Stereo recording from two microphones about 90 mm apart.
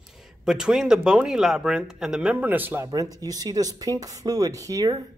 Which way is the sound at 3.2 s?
45° right (ahead or behind).